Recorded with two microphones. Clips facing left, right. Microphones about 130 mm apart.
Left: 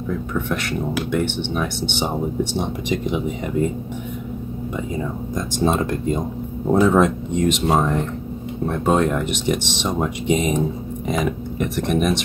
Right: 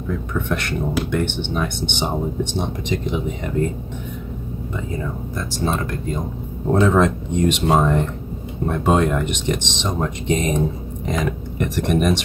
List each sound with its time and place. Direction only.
0.3 s speech: centre (ahead or behind)
4.7 s speech: 15° left (ahead or behind)
6.7 s speech: 10° left (ahead or behind)